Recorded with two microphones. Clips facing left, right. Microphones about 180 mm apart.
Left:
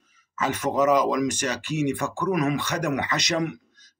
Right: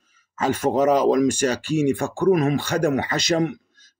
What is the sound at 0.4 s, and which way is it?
Speech, 30° right (ahead or behind).